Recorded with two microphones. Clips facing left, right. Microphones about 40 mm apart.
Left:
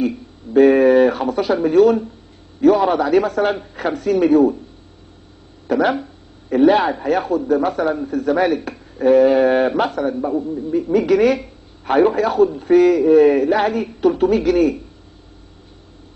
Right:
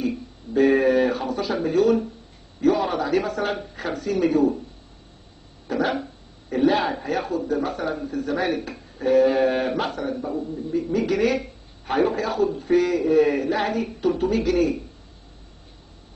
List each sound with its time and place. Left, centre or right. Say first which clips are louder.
0.6 s a man's voice: left 7 dB; left
5.7 s a man's voice: left 7 dB; left